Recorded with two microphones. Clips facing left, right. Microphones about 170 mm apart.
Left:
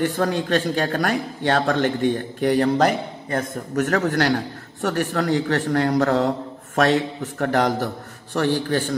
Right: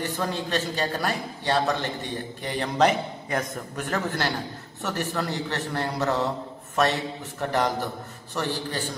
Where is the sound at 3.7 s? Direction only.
50° left (ahead or behind).